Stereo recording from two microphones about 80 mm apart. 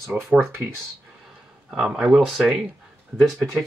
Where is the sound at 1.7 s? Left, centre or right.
Centre.